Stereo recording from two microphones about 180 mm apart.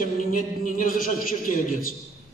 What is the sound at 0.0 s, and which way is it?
A man's voice, 50° left (ahead or behind).